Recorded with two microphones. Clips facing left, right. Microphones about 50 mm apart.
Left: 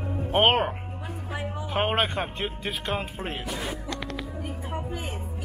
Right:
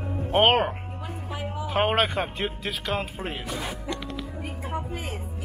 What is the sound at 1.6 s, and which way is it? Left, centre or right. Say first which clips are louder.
Speech: right 2 dB; centre.